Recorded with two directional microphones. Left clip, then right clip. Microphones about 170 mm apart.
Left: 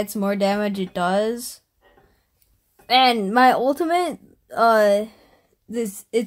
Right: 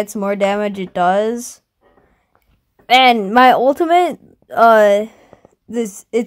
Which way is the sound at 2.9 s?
45° right (ahead or behind).